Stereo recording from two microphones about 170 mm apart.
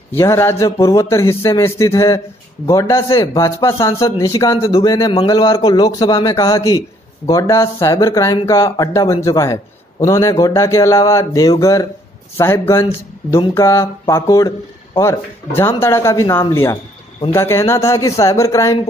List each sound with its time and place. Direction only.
0.1 s speech: 15° left (ahead or behind)